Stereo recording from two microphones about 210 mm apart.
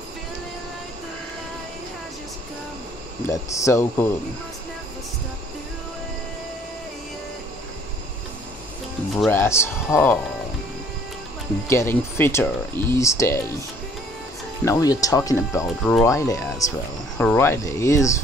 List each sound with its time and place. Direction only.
3.3 s speech: 15° left (ahead or behind)
9.2 s speech: 10° left (ahead or behind)
11.6 s speech: 15° left (ahead or behind)
14.6 s speech: 15° left (ahead or behind)
15.8 s speech: 5° left (ahead or behind)
16.1 s speech: 15° left (ahead or behind)